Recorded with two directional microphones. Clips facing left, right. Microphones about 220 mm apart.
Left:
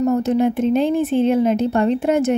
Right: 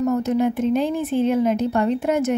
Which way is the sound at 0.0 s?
30° left (ahead or behind).